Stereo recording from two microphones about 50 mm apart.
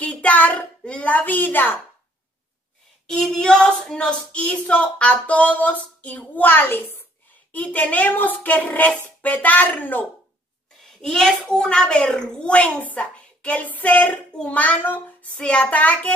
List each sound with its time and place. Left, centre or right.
0.0 s a child's voice: left
3.2 s speech: centre; by 7.1 s left
7.5 s speech: left
11.0 s a child's voice: centre; by 16.1 s left